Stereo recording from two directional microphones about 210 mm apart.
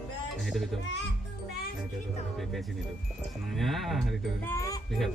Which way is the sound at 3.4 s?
Centre (ahead or behind).